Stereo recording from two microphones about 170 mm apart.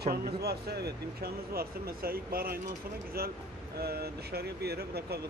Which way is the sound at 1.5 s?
60° right (ahead or behind).